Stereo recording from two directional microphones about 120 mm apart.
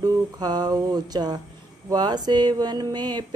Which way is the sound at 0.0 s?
35° right (ahead or behind).